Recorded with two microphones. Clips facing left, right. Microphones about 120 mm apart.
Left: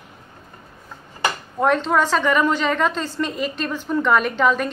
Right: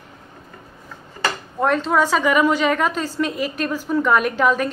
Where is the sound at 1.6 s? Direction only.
Centre (ahead or behind).